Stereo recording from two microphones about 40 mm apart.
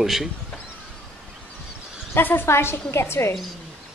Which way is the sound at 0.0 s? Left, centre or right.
Centre.